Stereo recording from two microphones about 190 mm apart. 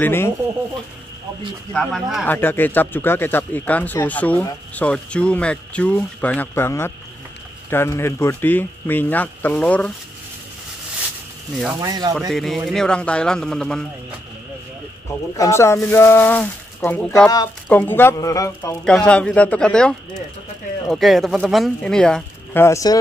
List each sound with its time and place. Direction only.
0.0 s speech: 10° left (ahead or behind)
1.7 s speech: centre (ahead or behind)
2.2 s speech: 10° left (ahead or behind)
11.8 s speech: 20° right (ahead or behind)
12.2 s speech: centre (ahead or behind)
15.3 s speech: 15° left (ahead or behind)
18.9 s speech: 5° left (ahead or behind)